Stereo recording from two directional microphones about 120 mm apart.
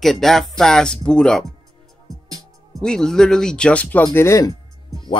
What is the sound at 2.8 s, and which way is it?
Speech, 5° left (ahead or behind).